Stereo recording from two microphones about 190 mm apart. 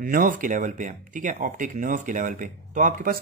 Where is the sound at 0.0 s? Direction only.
45° right (ahead or behind).